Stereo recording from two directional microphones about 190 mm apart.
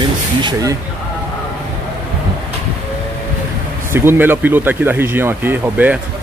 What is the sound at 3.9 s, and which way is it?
Speech, 10° right (ahead or behind).